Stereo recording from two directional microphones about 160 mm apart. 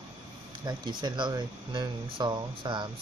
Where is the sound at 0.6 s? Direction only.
25° right (ahead or behind).